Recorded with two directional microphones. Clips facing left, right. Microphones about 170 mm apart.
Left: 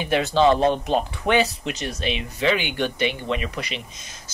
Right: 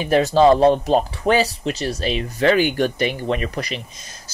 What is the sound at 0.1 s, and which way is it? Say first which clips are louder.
Speech: right 5 dB; 40° right (ahead or behind).